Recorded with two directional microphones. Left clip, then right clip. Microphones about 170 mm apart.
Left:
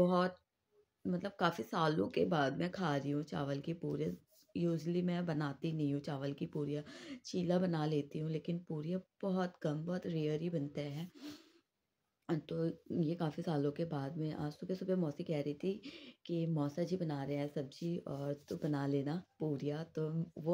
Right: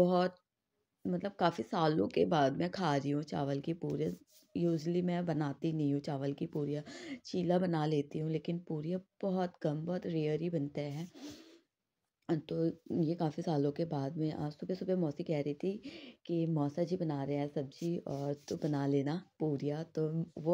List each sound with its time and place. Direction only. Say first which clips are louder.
0.0 s speech: right 3 dB; 20° right (ahead or behind)